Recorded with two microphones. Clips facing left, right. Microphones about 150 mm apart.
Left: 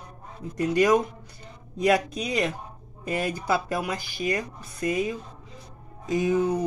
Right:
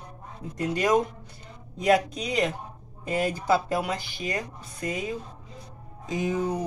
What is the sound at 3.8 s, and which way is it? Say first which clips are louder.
Speech: even; 25° right (ahead or behind).